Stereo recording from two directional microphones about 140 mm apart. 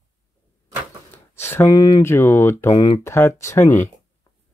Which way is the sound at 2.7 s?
35° left (ahead or behind).